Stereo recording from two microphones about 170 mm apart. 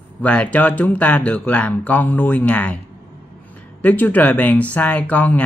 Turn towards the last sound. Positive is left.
turn(degrees=10)  # may be behind; listen again after turning